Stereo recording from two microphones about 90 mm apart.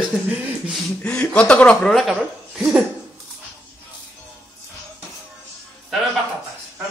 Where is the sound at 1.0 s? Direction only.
15° left (ahead or behind).